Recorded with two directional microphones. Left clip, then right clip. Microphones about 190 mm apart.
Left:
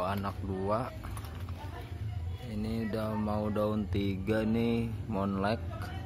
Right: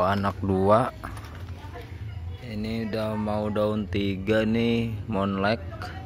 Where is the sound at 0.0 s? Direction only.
35° right (ahead or behind).